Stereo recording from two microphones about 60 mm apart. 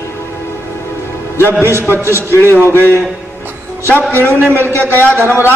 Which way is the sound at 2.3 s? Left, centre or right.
Left.